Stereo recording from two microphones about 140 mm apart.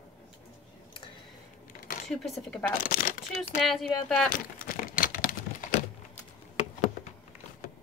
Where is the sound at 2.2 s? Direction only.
Centre (ahead or behind).